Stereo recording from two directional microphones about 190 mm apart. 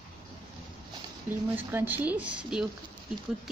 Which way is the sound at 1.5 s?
10° right (ahead or behind).